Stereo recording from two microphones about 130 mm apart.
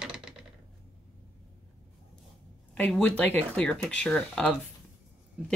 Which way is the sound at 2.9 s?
10° left (ahead or behind).